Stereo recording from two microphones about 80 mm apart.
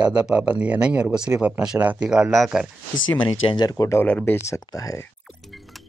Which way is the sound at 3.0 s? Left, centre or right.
Left.